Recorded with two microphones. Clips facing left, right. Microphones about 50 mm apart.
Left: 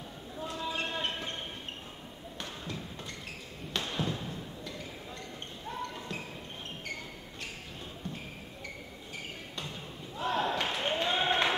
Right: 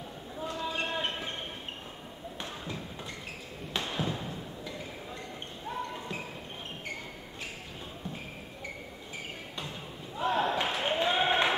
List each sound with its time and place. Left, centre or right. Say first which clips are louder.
0.4 s basketball bounce: right 1 dB; centre
3.7 s thump: right 1 dB; centre
5.7 s basketball bounce: right 2 dB; centre
10.1 s a sound: right 2 dB; centre